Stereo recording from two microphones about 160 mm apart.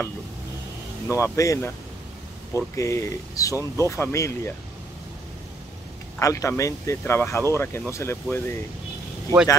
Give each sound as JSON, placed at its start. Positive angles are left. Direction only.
{"t": 1.0, "sound": "speech", "side_deg": 20}
{"t": 6.1, "sound": "speech", "side_deg": 20}